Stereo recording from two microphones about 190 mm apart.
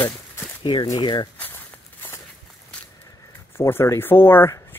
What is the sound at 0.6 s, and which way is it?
Speech, 25° left (ahead or behind).